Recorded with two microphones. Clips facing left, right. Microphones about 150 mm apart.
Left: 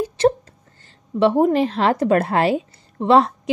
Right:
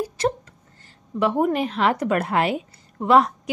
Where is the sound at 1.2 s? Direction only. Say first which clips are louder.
Left 5 dB; 30° left (ahead or behind).